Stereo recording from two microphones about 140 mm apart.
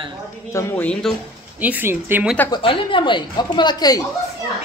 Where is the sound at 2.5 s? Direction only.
35° left (ahead or behind).